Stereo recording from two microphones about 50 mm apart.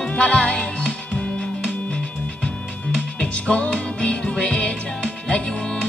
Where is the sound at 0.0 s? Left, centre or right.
Left.